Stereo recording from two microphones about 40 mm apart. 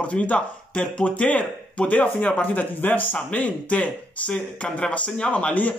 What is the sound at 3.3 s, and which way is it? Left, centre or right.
Speech, left.